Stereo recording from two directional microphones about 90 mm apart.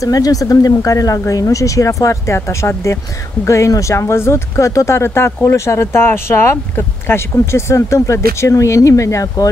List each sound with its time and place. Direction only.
0.0 s speech: 45° left (ahead or behind)